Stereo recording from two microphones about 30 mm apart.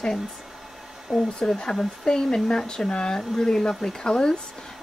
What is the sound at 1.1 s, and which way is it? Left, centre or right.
Speech, centre.